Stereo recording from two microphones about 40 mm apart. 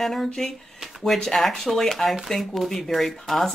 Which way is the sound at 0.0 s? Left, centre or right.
Centre.